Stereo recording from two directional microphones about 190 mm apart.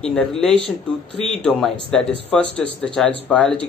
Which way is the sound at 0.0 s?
5° left (ahead or behind).